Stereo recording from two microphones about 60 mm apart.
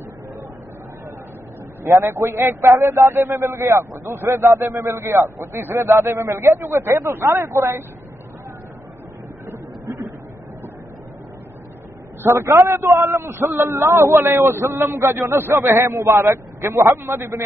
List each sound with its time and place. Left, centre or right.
2.0 s a man's voice: right
12.2 s a man's voice: right